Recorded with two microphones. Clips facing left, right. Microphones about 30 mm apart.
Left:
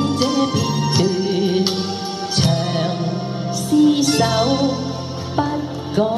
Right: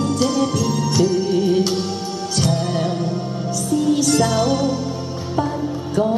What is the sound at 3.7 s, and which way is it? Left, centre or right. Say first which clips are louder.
Music: left 3 dB; left.